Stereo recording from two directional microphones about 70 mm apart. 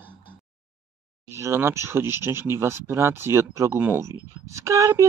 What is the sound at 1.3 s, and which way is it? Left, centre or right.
Speech, right.